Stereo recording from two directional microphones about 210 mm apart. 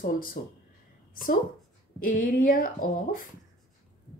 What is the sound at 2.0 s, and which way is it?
A woman's voice, 40° left (ahead or behind).